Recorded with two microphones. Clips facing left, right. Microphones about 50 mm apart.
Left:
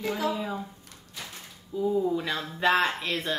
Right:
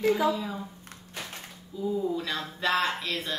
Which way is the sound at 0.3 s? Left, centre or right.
Centre.